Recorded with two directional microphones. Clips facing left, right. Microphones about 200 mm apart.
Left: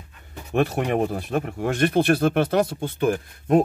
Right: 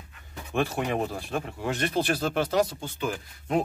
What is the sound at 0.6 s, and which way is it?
Speech, 55° left (ahead or behind).